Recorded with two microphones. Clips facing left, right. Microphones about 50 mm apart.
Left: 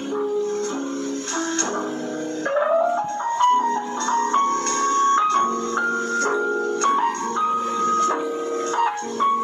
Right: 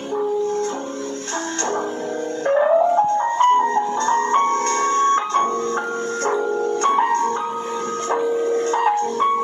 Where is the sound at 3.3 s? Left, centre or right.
Right.